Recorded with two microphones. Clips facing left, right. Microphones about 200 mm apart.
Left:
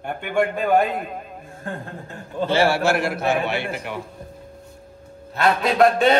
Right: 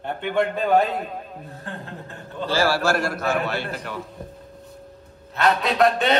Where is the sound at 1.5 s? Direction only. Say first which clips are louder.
Left 6 dB; 50° left (ahead or behind).